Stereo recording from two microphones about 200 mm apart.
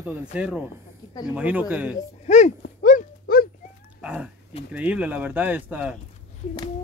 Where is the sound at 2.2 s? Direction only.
35° left (ahead or behind).